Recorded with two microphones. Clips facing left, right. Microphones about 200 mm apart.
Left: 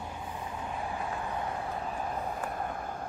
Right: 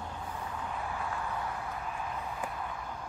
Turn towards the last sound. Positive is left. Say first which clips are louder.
# left 4 dB
turn(degrees=50)  # may be behind; listen again after turning